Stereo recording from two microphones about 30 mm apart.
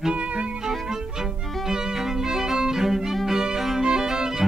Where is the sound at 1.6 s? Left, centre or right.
Centre.